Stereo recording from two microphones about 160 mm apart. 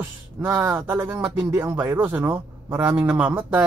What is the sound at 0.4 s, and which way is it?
Speech, 15° right (ahead or behind).